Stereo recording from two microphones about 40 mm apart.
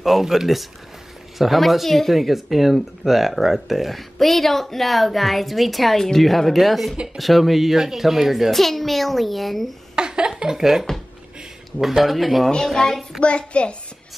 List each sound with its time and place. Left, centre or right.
0.0 s speech: centre
8.5 s speech: centre
9.9 s a sound: right
10.4 s speech: centre
12.8 s a child's voice: centre
13.2 s a child's voice: left